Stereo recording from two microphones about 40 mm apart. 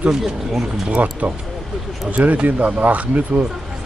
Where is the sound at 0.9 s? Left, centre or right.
Right.